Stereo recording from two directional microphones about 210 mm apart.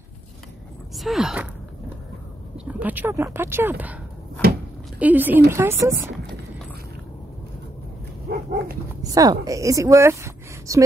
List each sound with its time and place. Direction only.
0.9 s speech: centre (ahead or behind)
2.5 s speech: 5° right (ahead or behind)
8.3 s dog: 45° right (ahead or behind)
9.0 s a woman's voice: 15° right (ahead or behind)